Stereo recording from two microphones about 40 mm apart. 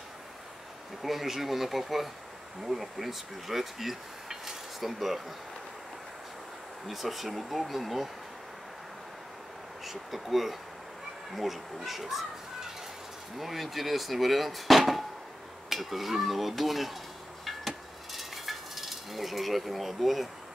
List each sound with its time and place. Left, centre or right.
1.0 s speech: centre
6.9 s speech: centre
9.8 s speech: centre
17.5 s a sound: centre